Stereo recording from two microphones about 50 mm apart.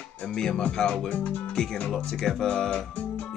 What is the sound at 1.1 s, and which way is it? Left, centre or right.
Speech, left.